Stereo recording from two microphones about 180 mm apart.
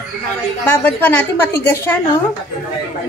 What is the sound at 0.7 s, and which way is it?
A woman's voice, 10° left (ahead or behind).